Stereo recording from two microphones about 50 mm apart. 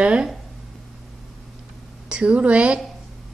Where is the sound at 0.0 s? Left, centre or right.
Centre.